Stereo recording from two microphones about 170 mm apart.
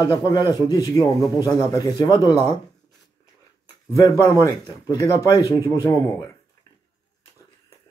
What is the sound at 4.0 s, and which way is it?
Speech, 20° left (ahead or behind).